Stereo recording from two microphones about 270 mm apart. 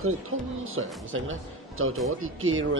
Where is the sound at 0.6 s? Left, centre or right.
Right.